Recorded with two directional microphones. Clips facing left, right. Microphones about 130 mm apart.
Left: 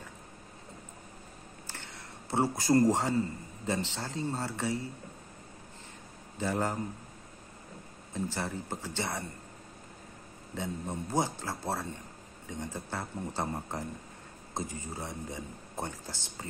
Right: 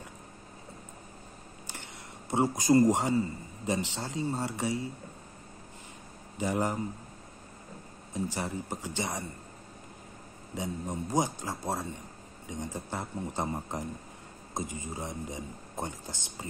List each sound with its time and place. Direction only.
2.3 s speech: 15° right (ahead or behind)
6.3 s speech: 15° right (ahead or behind)
8.1 s speech: 15° right (ahead or behind)
10.5 s speech: 15° right (ahead or behind)